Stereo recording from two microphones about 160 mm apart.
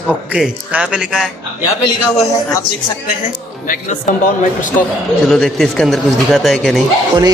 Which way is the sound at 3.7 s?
60° left (ahead or behind).